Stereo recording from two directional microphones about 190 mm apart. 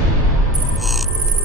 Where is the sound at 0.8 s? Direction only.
Centre (ahead or behind).